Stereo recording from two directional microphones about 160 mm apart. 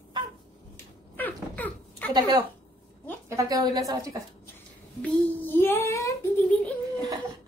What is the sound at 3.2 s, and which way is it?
Speech, 20° right (ahead or behind).